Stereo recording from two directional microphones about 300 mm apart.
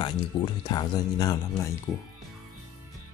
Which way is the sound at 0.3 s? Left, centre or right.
Centre.